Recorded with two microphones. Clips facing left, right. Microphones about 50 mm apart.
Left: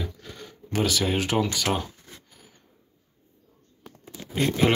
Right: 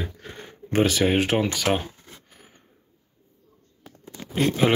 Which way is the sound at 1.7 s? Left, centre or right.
Right.